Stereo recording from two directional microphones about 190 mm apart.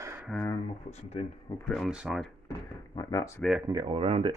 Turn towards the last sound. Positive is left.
turn(degrees=-30)  # may be behind; listen again after turning